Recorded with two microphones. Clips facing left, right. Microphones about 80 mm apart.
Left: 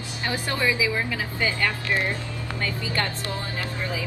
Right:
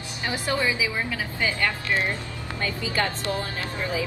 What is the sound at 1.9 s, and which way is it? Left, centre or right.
A woman's voice, right.